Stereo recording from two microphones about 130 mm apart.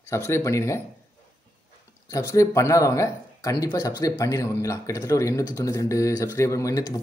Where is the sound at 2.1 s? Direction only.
25° left (ahead or behind).